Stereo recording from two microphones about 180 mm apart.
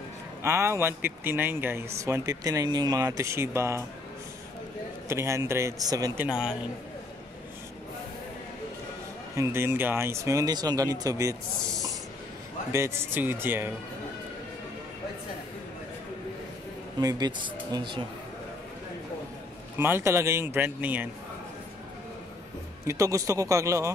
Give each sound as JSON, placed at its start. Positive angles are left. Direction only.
{"t": 0.4, "sound": "speech", "side_deg": -15}
{"t": 5.0, "sound": "speech", "side_deg": -15}
{"t": 6.2, "sound": "a man's voice", "side_deg": -5}
{"t": 9.4, "sound": "speech", "side_deg": -15}
{"t": 12.7, "sound": "speech", "side_deg": -15}
{"t": 17.0, "sound": "speech", "side_deg": -20}
{"t": 19.8, "sound": "speech", "side_deg": -15}
{"t": 22.8, "sound": "speech", "side_deg": -15}